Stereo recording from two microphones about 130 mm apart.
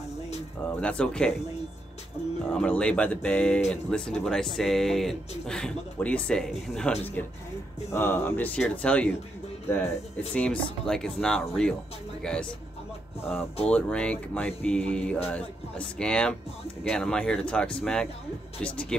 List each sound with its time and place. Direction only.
0.7 s speech: 10° left (ahead or behind)
2.5 s a man's voice: 10° left (ahead or behind)
7.9 s speech: 15° left (ahead or behind)
10.3 s a man's voice: 10° left (ahead or behind)